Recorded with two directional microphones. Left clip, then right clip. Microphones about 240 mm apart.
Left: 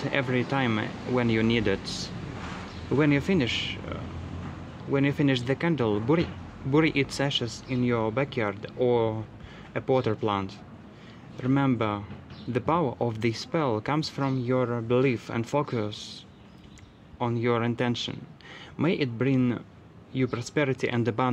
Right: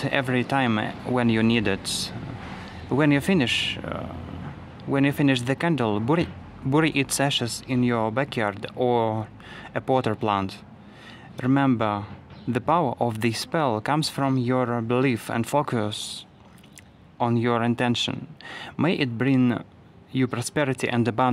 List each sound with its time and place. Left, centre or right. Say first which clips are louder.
0.0 s speech: right 3 dB; right
17.2 s speech: right 3 dB; right